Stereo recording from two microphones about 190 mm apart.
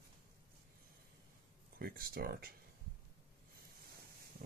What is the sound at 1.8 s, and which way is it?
Speech, 50° right (ahead or behind).